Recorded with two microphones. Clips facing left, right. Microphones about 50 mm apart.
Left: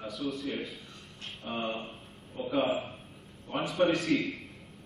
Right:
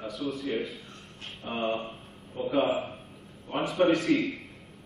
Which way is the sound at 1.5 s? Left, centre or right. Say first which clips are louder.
Right 2 dB; right.